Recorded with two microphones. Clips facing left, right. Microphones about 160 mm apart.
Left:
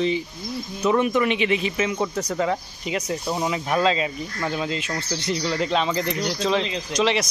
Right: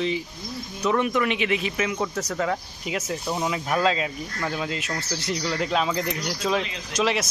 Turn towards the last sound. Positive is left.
turn(degrees=-5)  # may be behind; listen again after turning